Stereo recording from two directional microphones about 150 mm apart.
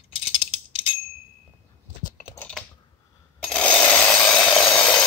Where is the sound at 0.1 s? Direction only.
40° left (ahead or behind).